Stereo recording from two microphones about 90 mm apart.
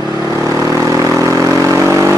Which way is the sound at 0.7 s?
35° right (ahead or behind).